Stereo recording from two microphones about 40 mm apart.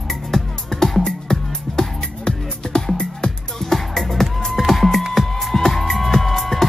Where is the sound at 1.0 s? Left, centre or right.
Centre.